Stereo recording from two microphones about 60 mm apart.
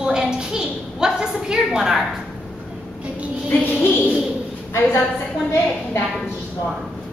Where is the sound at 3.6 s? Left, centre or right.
Left.